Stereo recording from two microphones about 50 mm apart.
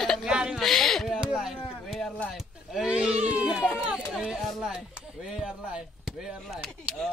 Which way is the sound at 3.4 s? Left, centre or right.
Centre.